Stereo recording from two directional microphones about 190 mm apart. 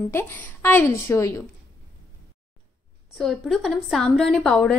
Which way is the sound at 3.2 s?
Centre (ahead or behind).